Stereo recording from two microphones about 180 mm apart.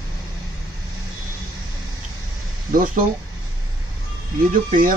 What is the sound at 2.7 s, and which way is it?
Speech, 50° right (ahead or behind).